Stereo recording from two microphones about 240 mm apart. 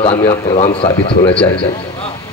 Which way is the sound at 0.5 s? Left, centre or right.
Left.